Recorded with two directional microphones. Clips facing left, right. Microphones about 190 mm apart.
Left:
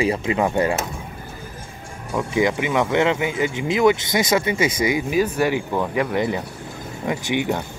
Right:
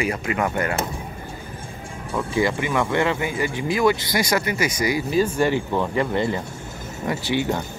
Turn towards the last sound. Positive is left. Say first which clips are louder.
# left 1 dB
turn(degrees=15)  # may be behind; listen again after turning